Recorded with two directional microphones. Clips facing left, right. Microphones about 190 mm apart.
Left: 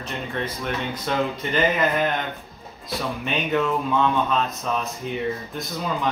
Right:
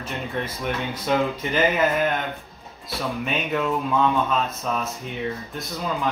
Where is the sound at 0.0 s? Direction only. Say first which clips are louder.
Even; 10° right (ahead or behind).